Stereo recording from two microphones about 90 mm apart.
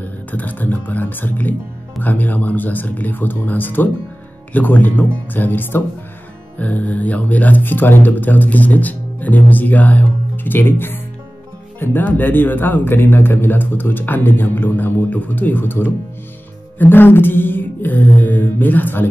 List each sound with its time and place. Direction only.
0.0 s speech: 20° left (ahead or behind)